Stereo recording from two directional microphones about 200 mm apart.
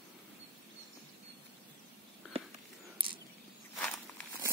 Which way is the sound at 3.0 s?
25° right (ahead or behind).